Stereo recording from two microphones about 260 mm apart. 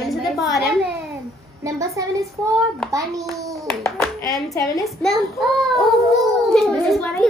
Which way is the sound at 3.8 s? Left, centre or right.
Centre.